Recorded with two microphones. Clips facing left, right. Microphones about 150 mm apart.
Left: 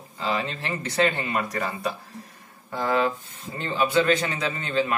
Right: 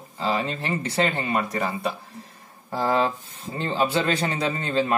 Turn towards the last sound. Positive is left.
turn(degrees=-35)  # may be behind; listen again after turning